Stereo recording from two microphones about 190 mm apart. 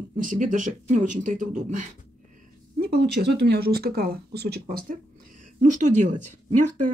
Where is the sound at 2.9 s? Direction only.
60° right (ahead or behind).